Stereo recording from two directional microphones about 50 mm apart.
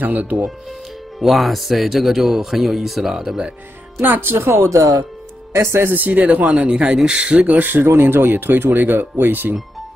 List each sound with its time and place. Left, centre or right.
0.0 s speech: right
1.2 s speech: centre
4.0 s speech: right
5.8 s speech: right; by 7.3 s centre
7.3 s speech: right